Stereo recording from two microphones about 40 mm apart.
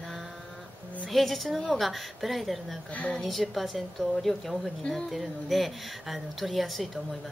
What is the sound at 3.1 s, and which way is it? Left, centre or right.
Speech, centre.